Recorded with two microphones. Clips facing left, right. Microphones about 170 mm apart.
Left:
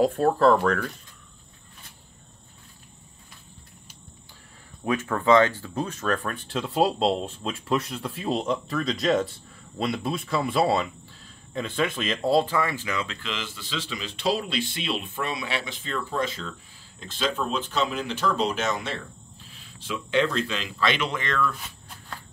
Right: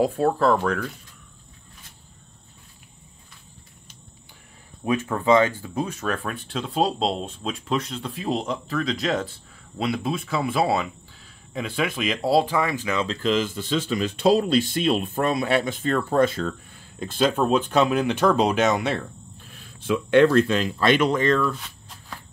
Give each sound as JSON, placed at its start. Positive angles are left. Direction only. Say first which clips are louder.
{"t": 0.0, "sound": "speech", "louder": "left 1 dB", "side_deg": -10}
{"t": 4.8, "sound": "speech", "louder": "right 1 dB", "side_deg": -15}
{"t": 13.1, "sound": "speech", "louder": "right 12 dB", "side_deg": -40}
{"t": 19.4, "sound": "a sound", "louder": "right 10 dB", "side_deg": -55}
{"t": 20.3, "sound": "speech", "louder": "right 9 dB", "side_deg": -50}